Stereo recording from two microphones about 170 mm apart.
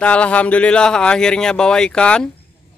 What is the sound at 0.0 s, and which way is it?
Speech, 10° left (ahead or behind).